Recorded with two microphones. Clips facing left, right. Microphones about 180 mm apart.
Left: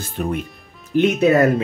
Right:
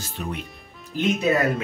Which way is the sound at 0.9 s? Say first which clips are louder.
Left 8 dB; 65° left (ahead or behind).